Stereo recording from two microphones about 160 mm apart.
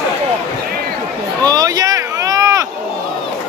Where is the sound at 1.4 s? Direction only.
25° right (ahead or behind).